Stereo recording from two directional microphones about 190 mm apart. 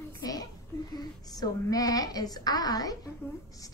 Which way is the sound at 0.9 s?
20° left (ahead or behind).